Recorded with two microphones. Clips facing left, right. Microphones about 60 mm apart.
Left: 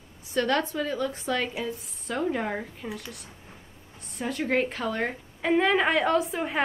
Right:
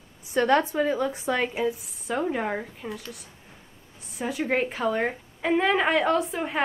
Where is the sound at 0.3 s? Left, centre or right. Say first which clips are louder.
Right 4 dB; centre.